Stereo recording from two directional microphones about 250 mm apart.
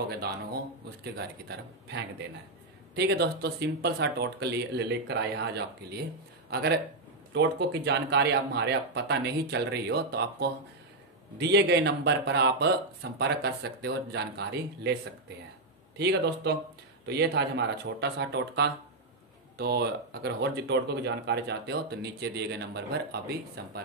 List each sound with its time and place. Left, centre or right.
1.1 s speech: right